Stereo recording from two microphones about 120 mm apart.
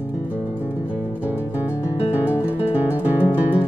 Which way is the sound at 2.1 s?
15° right (ahead or behind).